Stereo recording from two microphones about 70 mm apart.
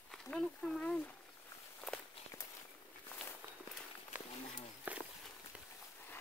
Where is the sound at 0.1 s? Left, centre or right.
Centre.